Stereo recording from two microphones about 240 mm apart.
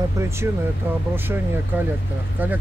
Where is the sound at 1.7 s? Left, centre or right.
Centre.